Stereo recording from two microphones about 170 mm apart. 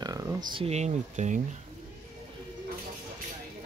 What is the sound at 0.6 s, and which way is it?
Speech, 40° right (ahead or behind).